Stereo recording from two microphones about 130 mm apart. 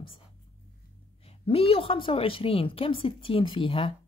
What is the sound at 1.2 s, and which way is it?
A woman's voice, 45° left (ahead or behind).